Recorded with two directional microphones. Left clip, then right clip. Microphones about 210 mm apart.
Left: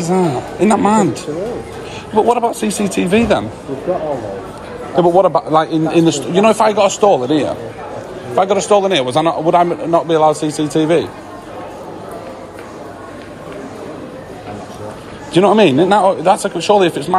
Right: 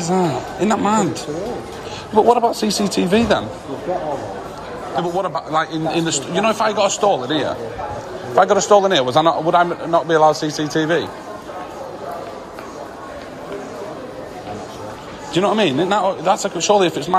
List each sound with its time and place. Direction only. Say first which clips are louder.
0.0 s a man's voice: left 3 dB; 15° right (ahead or behind)
4.9 s a man's voice: left 10 dB; centre (ahead or behind)
8.4 s a man's voice: even; 15° right (ahead or behind)
15.3 s a man's voice: left 6 dB; 10° right (ahead or behind)